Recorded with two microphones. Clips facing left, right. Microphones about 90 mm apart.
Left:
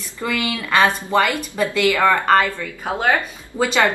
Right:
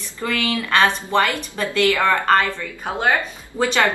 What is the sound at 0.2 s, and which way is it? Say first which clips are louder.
Speech: even; 15° left (ahead or behind).